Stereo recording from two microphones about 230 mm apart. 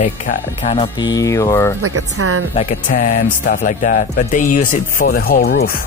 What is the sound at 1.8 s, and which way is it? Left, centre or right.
Speech, right.